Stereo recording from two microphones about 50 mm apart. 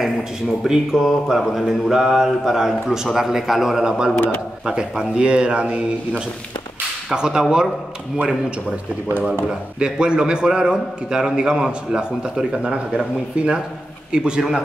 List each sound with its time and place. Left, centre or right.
0.7 s a man's voice: centre
9.8 s a man's voice: centre